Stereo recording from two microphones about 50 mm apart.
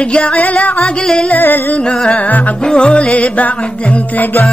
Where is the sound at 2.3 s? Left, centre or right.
Left.